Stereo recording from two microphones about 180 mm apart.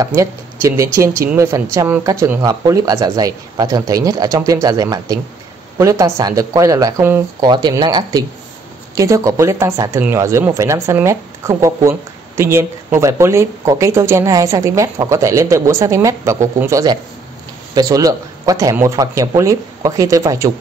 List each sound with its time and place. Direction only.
0.0 s speech: 15° right (ahead or behind)